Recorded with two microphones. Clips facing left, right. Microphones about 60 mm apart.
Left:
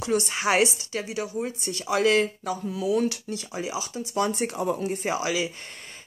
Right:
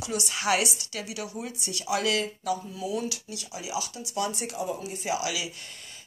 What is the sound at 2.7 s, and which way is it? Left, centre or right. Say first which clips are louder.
A woman's voice: left 7 dB; left.